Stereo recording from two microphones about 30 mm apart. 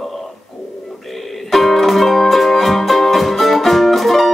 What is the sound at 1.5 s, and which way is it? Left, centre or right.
Music, centre.